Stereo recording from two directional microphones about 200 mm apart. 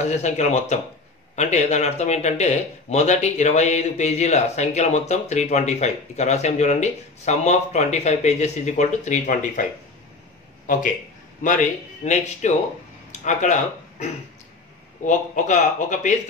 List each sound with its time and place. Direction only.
0.0 s speech: 35° left (ahead or behind)
11.4 s speech: 40° left (ahead or behind)